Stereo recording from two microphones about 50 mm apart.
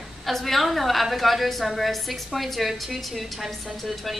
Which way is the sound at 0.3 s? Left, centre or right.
Centre.